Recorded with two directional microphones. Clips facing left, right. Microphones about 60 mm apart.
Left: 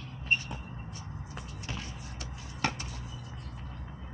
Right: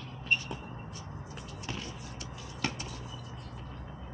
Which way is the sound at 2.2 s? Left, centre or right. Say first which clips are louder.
Left 3 dB; left.